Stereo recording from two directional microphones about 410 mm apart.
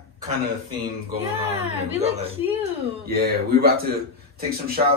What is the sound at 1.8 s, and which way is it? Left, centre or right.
Speech, centre.